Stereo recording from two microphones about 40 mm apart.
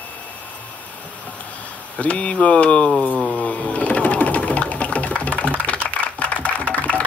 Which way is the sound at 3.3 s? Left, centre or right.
Left.